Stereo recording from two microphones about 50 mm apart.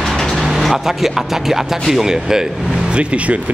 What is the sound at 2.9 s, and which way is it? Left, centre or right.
Speech, right.